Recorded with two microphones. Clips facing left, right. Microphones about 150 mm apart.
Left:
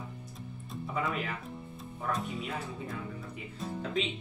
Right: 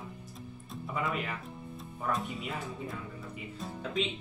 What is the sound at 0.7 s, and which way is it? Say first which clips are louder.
Speech: left 1 dB; centre (ahead or behind).